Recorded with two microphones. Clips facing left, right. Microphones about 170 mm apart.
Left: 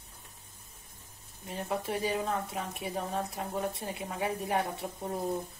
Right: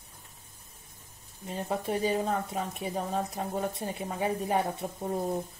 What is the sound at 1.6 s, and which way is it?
A woman's voice, 30° right (ahead or behind).